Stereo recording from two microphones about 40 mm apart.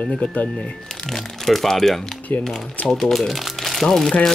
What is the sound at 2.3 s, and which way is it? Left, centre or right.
Speech, left.